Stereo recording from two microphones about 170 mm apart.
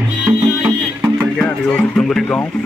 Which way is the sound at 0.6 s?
10° right (ahead or behind).